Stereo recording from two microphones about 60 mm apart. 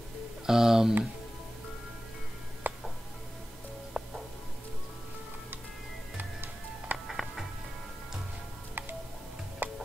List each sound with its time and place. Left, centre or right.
0.5 s speech: centre
2.6 s music: right
3.9 s music: centre
6.1 s music: right
7.1 s music: centre
9.6 s tick-tock: right